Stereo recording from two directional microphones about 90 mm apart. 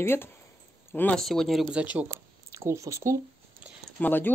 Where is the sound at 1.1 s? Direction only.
5° left (ahead or behind).